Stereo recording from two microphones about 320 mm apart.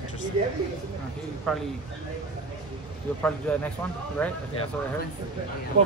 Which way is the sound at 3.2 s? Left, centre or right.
Centre.